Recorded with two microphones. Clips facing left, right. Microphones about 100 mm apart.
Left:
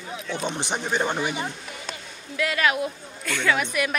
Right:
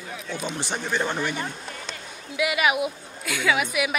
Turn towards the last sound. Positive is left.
turn(degrees=-5)  # may be behind; listen again after turning